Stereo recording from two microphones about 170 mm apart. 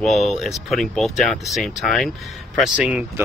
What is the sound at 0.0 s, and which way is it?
Speech, centre (ahead or behind).